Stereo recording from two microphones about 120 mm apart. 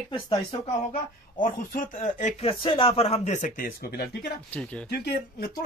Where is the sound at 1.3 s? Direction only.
90° left.